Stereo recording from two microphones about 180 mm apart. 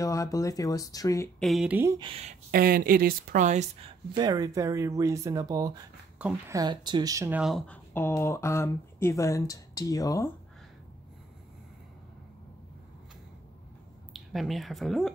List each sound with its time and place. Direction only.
0.0 s speech: 20° left (ahead or behind)
1.4 s speech: centre (ahead or behind)
2.0 s speech: 30° right (ahead or behind)
2.5 s speech: 55° right (ahead or behind)
4.2 s speech: 20° right (ahead or behind)
6.2 s a woman's voice: 5° right (ahead or behind)
6.5 s speech: 25° right (ahead or behind); by 10.3 s 20° left (ahead or behind)
14.1 s speech: centre (ahead or behind)